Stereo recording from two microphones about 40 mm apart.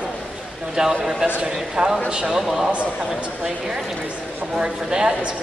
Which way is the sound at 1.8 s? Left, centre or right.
Right.